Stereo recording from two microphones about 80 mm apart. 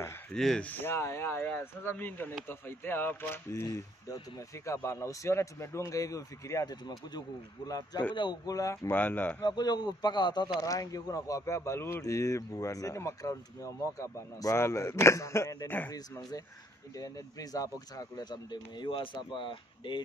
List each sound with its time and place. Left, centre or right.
0.3 s speech: centre
0.6 s speech: left
0.9 s speech: left
3.6 s speech: left
6.9 s speech: left
8.1 s speech: left
8.5 s speech: left
8.9 s speech: left
9.4 s speech: left
10.6 s speech: left
15.9 s speech: left